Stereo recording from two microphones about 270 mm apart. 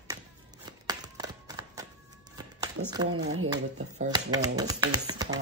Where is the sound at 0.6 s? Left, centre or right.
Centre.